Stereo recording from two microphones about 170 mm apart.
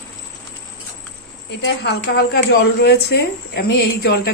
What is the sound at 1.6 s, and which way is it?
A woman's voice, 70° left (ahead or behind).